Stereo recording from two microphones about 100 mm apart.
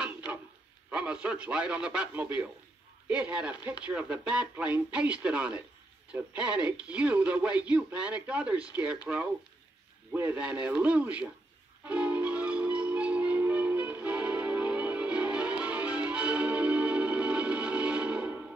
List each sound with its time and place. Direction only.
0.0 s a sound: 15° right (ahead or behind)
0.8 s a man's voice: 10° right (ahead or behind)
10.1 s speech: 25° right (ahead or behind)
10.6 s speech: 15° right (ahead or behind)
11.8 s music: 15° right (ahead or behind)